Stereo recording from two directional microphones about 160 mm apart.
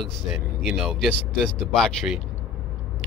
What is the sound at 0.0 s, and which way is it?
Speech, 5° right (ahead or behind).